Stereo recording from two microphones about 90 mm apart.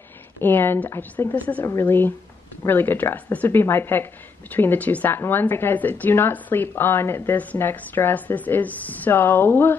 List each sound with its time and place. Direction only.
0.4 s a woman's voice: 25° left (ahead or behind)